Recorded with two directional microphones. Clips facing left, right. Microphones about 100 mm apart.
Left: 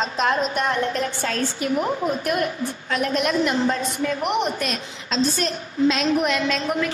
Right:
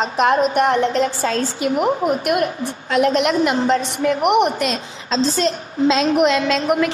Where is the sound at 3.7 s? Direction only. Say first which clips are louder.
Right 6 dB; 70° right (ahead or behind).